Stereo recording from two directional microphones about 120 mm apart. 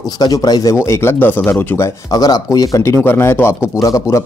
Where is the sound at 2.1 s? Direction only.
30° left (ahead or behind).